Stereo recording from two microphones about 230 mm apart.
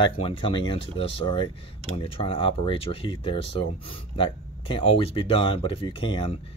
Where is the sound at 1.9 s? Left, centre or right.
Left.